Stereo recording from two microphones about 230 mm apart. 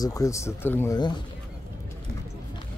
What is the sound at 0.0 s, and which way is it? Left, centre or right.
Speech, centre.